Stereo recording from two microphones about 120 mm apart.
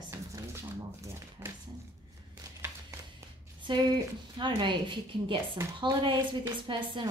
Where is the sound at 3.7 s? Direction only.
40° right (ahead or behind).